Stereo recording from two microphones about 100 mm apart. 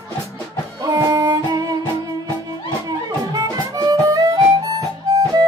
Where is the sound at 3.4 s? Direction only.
35° right (ahead or behind).